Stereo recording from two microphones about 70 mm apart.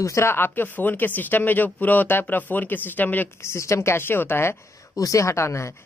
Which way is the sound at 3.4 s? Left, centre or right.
Left.